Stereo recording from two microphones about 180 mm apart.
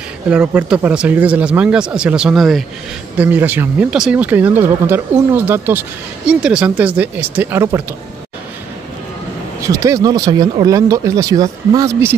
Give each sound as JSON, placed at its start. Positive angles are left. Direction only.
{"t": 0.3, "sound": "speech", "side_deg": -5}
{"t": 9.6, "sound": "speech", "side_deg": -20}